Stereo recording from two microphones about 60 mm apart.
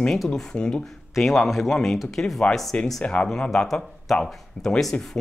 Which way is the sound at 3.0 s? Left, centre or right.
Centre.